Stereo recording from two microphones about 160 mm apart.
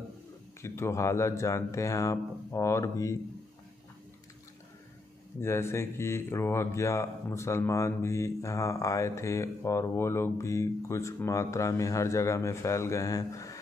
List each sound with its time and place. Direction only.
0.6 s speech: 15° left (ahead or behind)
5.4 s speech: 15° left (ahead or behind)